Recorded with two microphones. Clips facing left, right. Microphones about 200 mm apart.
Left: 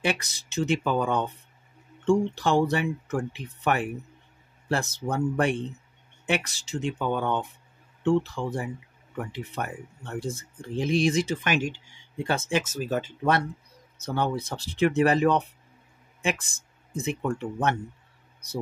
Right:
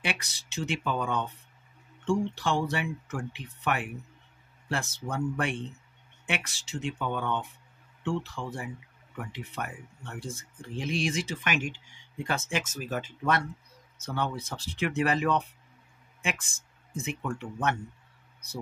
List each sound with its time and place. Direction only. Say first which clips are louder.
0.0 s speech: left 7 dB; 40° left (ahead or behind)